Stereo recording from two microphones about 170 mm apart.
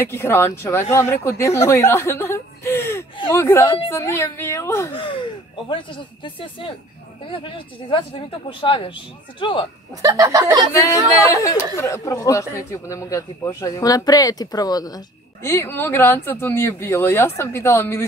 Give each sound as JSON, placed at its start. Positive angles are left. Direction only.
{"t": 0.1, "sound": "a man's voice", "side_deg": 15}
{"t": 4.9, "sound": "gasp", "side_deg": 30}
{"t": 5.7, "sound": "speech", "side_deg": 30}
{"t": 10.0, "sound": "a sound", "side_deg": -20}
{"t": 10.8, "sound": "a man's voice", "side_deg": 20}